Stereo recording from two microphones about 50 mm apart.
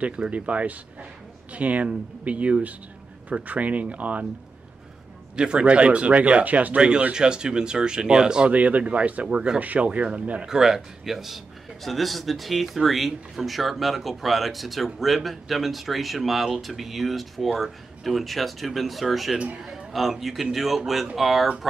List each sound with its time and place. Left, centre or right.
0.3 s speech: right
5.3 s speech: right
8.5 s speech: right
10.4 s a man's voice: centre
19.3 s speech: right
19.9 s a man's voice: centre